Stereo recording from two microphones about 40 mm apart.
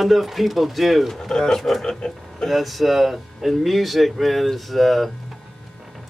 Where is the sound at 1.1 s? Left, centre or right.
Centre.